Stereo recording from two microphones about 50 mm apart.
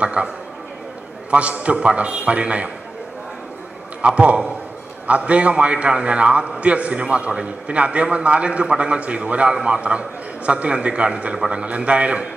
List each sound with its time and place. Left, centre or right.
0.0 s a man's voice: right
1.3 s a man's voice: right
4.0 s a man's voice: right